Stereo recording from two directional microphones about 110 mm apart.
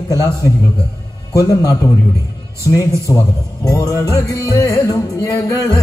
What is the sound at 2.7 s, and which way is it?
Music, 30° left (ahead or behind).